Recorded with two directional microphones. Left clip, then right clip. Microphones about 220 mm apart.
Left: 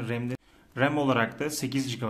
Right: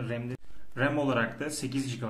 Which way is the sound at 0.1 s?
40° left (ahead or behind).